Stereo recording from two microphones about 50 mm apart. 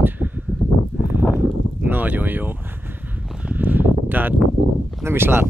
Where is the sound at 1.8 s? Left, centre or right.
Right.